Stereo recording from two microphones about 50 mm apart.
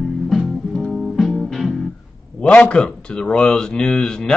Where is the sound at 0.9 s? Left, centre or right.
Centre.